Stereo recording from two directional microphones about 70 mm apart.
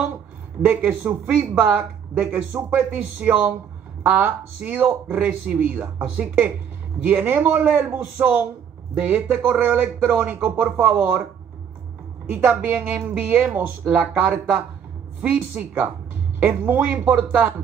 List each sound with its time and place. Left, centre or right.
0.7 s a man's voice: right
12.3 s a man's voice: right